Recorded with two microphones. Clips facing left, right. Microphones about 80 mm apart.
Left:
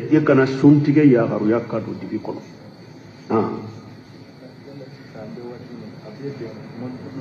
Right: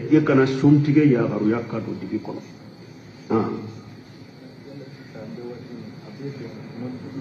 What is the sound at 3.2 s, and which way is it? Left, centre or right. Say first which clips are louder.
Speech: left 2 dB; left.